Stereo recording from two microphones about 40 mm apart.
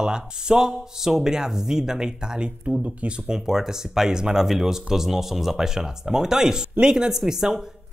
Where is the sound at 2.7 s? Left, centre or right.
Right.